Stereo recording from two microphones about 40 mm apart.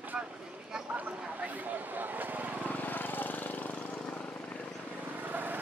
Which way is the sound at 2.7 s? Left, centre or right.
Left.